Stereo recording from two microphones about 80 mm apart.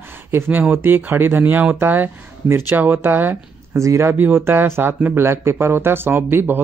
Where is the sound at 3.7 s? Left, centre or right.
Right.